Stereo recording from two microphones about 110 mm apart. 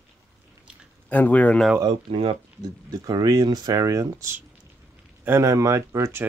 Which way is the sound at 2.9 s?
35° right (ahead or behind).